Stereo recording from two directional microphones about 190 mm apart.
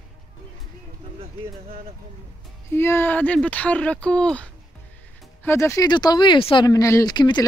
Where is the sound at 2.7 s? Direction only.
10° left (ahead or behind).